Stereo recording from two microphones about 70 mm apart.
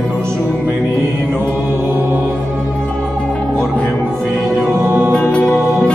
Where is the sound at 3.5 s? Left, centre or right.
Left.